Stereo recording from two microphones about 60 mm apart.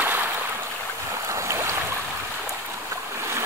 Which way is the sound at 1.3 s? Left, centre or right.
Right.